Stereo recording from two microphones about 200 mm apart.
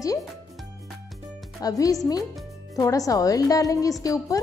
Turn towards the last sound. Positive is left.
turn(degrees=15)  # may be behind; listen again after turning